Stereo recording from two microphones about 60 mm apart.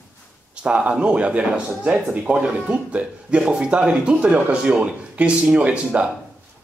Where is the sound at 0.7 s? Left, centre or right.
Centre.